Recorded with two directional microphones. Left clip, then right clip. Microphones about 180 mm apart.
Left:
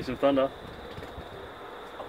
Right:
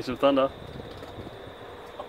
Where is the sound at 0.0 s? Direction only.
15° right (ahead or behind).